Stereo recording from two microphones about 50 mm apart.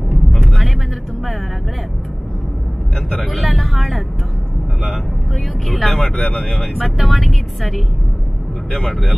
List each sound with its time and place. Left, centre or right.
3.1 s speech: centre
5.9 s speech: centre
6.6 s speech: centre